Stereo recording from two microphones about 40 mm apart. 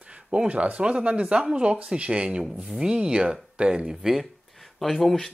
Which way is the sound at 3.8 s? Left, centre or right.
Centre.